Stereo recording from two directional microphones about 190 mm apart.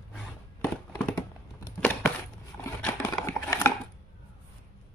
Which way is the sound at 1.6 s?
10° left (ahead or behind).